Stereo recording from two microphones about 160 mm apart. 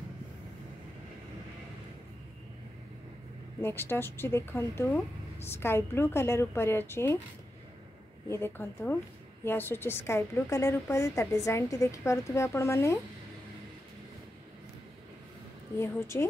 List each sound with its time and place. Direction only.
3.6 s a woman's voice: 15° left (ahead or behind)
8.3 s a woman's voice: 15° left (ahead or behind)
15.8 s a woman's voice: 15° left (ahead or behind)